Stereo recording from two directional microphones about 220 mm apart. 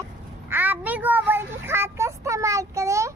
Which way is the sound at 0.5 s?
10° right (ahead or behind).